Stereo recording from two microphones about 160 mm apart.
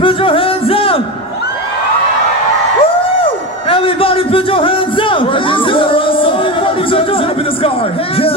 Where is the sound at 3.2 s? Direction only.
35° left (ahead or behind).